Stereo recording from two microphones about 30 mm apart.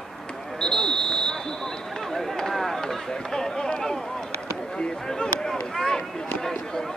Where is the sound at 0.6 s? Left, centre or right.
Left.